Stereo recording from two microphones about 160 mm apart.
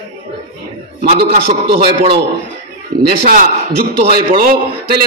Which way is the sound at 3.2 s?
55° right (ahead or behind).